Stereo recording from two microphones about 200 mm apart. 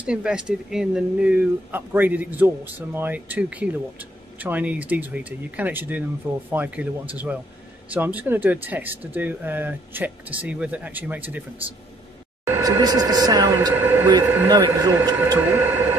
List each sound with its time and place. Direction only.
0.0 s speech: 5° right (ahead or behind)
12.4 s speech: 15° right (ahead or behind)
15.2 s a sound: 10° right (ahead or behind)